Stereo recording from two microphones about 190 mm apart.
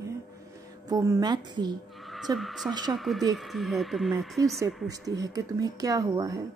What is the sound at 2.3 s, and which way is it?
Speech, centre (ahead or behind).